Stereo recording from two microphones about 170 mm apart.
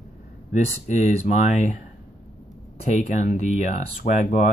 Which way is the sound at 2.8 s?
45° left (ahead or behind).